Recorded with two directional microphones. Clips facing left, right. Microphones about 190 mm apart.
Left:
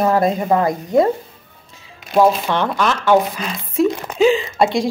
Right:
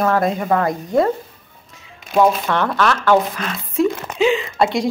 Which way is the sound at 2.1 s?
Centre (ahead or behind).